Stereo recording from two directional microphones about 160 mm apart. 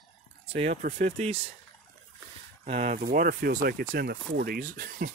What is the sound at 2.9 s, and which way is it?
Speech, 60° right (ahead or behind).